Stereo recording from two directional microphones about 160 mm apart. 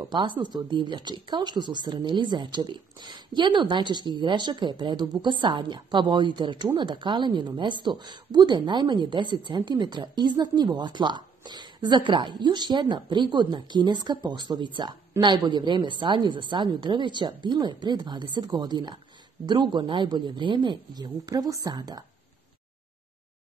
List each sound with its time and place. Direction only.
0.0 s speech: 30° right (ahead or behind)